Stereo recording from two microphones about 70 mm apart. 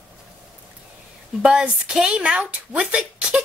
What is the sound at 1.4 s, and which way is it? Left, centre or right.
Speech, centre.